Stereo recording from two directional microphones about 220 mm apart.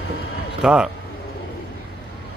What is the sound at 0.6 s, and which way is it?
Speech, 5° right (ahead or behind).